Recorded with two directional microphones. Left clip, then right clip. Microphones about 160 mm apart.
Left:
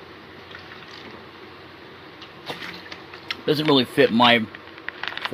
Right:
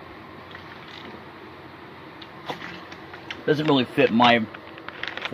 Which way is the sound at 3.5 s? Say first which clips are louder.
Left 2 dB; 10° left (ahead or behind).